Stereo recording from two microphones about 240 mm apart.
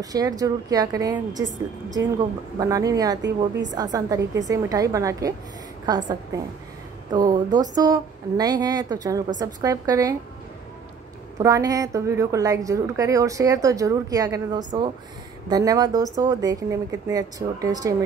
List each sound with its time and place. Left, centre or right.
0.0 s a woman's voice: centre
3.2 s a woman's voice: right
3.7 s a woman's voice: centre
11.3 s a woman's voice: centre